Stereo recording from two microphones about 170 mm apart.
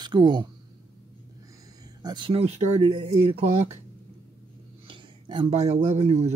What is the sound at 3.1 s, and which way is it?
Speech, 40° right (ahead or behind).